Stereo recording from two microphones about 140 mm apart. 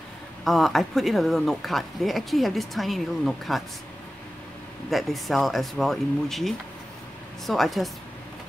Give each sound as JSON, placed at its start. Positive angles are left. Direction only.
{"t": 0.5, "sound": "speech", "side_deg": 0}
{"t": 4.9, "sound": "speech", "side_deg": 0}